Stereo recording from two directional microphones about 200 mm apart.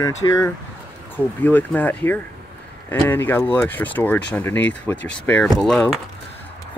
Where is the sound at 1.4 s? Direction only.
10° left (ahead or behind).